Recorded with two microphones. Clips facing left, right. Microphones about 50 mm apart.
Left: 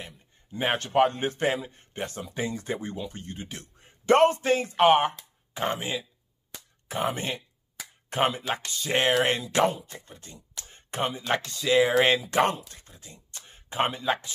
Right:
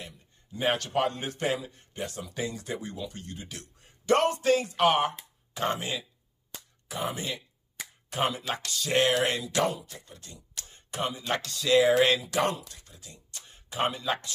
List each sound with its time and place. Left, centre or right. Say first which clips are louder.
0.0 s a sound: left 2 dB; left
0.9 s a man's voice: left 6 dB; left
5.6 s speech: left 1 dB; centre
6.9 s a man's voice: left 4 dB; left
11.2 s speech: left 1 dB; left
11.9 s speech: left 1 dB; left